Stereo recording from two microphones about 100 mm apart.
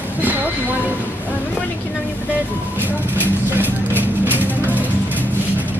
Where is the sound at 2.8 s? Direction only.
20° right (ahead or behind).